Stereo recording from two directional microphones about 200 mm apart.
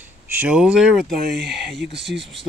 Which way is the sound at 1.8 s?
60° right (ahead or behind).